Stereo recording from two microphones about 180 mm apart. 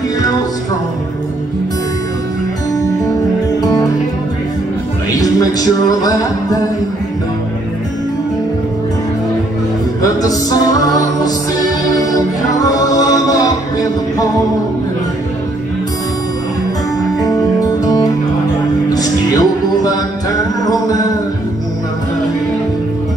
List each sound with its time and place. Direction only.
5.1 s music: 20° left (ahead or behind)
10.0 s music: 20° left (ahead or behind)
17.2 s music: 20° left (ahead or behind)